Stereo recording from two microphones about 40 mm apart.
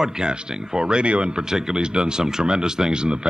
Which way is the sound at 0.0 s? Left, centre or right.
Centre.